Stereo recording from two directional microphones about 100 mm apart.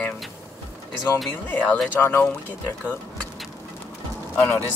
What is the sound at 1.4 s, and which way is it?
Speech, 15° left (ahead or behind).